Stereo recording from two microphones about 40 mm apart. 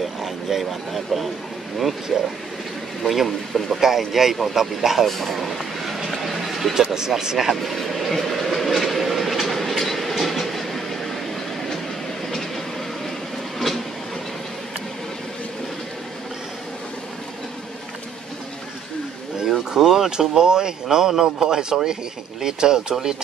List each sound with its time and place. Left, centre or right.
0.2 s a man's voice: centre
6.0 s a sound: centre
6.7 s speech: centre
7.6 s train: centre
12.3 s train: centre
19.7 s speech: centre